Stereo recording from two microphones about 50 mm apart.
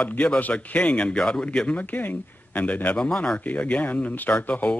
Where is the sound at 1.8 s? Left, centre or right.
Left.